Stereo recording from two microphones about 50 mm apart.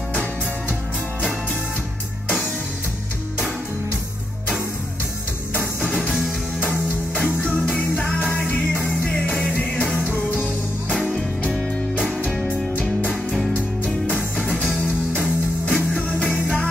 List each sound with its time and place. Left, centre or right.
5.5 s music: left
7.6 s music: left
10.9 s music: centre
13.1 s music: centre
14.1 s music: left
15.7 s music: left